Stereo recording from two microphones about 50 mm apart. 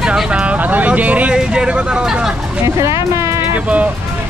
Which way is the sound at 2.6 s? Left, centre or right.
Right.